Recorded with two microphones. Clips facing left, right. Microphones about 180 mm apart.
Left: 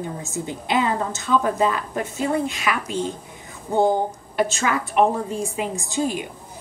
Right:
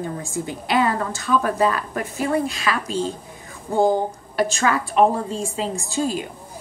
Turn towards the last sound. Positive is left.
turn(degrees=20)  # may be behind; listen again after turning